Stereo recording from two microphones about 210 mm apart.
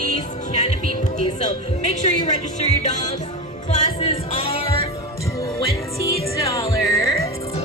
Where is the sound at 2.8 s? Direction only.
35° left (ahead or behind).